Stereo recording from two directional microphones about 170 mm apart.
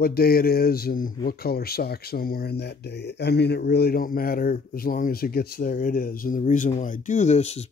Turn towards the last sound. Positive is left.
turn(degrees=40)  # may be behind; listen again after turning